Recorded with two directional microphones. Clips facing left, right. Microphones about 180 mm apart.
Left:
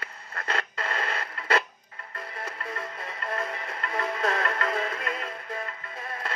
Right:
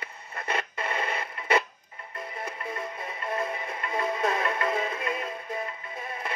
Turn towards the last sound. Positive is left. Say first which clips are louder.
# right 1 dB
turn(degrees=-15)  # may be behind; listen again after turning